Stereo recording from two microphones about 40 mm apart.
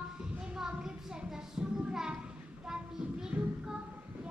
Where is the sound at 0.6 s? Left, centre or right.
Centre.